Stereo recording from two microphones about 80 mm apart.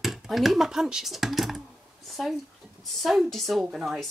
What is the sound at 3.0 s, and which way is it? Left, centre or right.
Speech, centre.